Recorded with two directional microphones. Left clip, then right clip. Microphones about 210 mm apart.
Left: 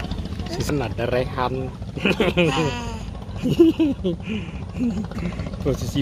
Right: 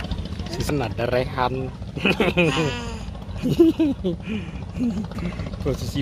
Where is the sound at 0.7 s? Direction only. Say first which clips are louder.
Right 1 dB; 20° right (ahead or behind).